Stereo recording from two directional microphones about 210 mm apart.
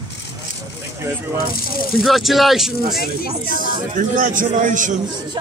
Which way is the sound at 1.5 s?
45° left (ahead or behind).